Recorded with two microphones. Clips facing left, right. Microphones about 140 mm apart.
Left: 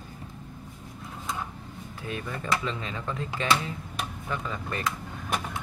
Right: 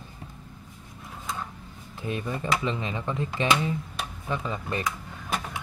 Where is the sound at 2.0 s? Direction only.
20° right (ahead or behind).